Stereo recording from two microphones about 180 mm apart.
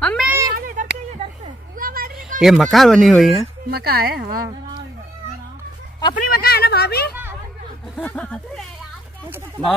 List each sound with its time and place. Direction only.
0.0 s a sound: 5° left (ahead or behind)
0.6 s a sound: 55° right (ahead or behind)
2.4 s speech: centre (ahead or behind)
3.7 s a woman's voice: 55° right (ahead or behind)
6.1 s speech: 60° left (ahead or behind)
7.9 s speech: 5° left (ahead or behind)